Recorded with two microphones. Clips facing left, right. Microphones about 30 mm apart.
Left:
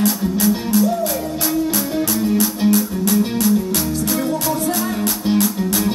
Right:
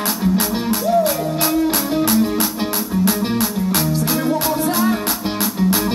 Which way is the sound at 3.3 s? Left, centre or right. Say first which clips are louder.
Left 2 dB; centre.